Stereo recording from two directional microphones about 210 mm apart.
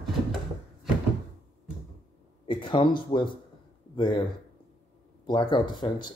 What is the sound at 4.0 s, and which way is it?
Speech, 25° left (ahead or behind).